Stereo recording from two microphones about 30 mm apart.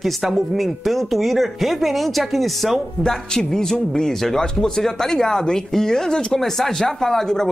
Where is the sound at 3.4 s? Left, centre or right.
Left.